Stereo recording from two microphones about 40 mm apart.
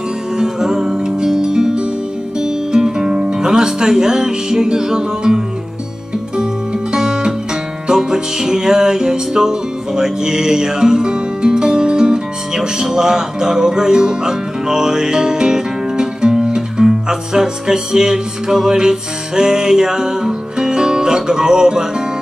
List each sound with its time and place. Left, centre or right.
0.4 s music: centre